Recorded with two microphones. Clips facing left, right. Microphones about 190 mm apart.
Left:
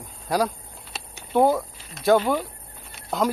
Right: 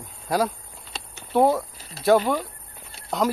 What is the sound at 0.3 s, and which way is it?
Speech, centre (ahead or behind).